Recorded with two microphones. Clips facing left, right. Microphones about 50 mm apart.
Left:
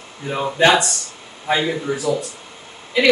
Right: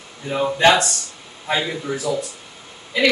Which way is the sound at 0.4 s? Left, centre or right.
Centre.